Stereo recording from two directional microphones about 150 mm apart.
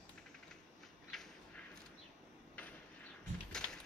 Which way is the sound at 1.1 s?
Centre (ahead or behind).